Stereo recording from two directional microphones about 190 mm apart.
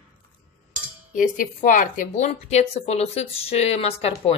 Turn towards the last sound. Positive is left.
turn(degrees=30)  # may be behind; listen again after turning